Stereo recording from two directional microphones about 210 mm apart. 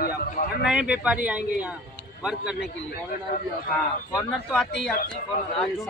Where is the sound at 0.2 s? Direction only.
45° left (ahead or behind).